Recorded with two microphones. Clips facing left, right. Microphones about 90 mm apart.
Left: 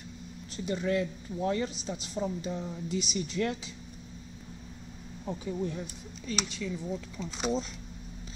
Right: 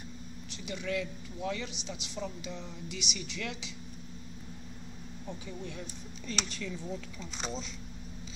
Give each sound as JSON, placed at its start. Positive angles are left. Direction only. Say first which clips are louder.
{"t": 0.6, "sound": "speech", "louder": "left 6 dB", "side_deg": 35}
{"t": 5.4, "sound": "speech", "louder": "left 12 dB", "side_deg": 40}
{"t": 6.2, "sound": "speech", "louder": "left 3 dB", "side_deg": 5}